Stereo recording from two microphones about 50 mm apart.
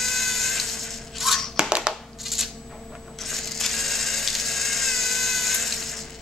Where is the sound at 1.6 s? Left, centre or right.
Centre.